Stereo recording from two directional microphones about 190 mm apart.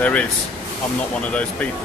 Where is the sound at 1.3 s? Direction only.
5° left (ahead or behind).